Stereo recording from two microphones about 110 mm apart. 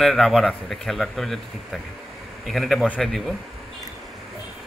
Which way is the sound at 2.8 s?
10° left (ahead or behind).